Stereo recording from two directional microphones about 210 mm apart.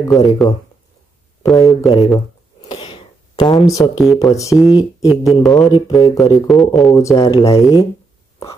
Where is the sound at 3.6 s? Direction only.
15° left (ahead or behind).